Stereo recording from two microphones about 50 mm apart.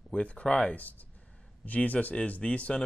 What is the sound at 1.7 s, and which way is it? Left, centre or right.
Speech, left.